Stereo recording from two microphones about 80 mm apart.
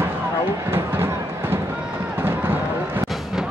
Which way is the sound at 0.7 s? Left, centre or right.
Right.